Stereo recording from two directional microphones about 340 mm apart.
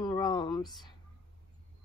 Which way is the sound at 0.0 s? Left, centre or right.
Centre.